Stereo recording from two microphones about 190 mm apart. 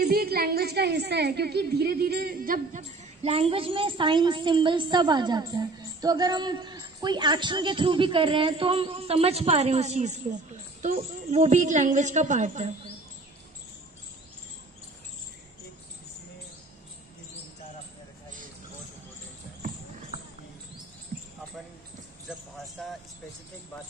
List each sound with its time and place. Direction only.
0.0 s a woman's voice: 55° right (ahead or behind)
3.2 s a woman's voice: 30° right (ahead or behind)
10.8 s speech: 50° right (ahead or behind)
11.3 s a woman's voice: 40° right (ahead or behind)